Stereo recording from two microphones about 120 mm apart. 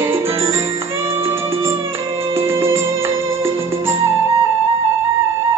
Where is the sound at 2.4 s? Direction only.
20° right (ahead or behind).